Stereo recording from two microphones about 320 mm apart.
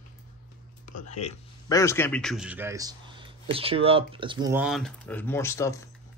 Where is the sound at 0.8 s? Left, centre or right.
Left.